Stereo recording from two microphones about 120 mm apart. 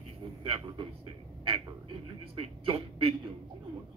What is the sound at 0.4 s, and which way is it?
Speech, 45° right (ahead or behind).